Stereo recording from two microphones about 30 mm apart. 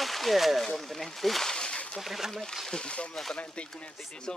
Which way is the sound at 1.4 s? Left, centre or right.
Left.